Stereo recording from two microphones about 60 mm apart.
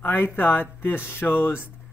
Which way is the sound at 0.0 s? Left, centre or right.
Left.